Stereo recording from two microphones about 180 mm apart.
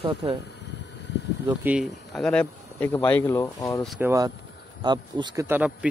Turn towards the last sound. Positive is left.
turn(degrees=-10)  # may be behind; listen again after turning